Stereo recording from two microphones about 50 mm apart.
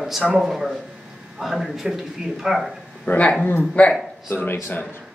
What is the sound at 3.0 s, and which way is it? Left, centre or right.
Speech, left.